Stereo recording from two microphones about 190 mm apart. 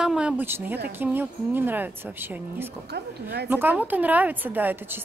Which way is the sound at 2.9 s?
60° right (ahead or behind).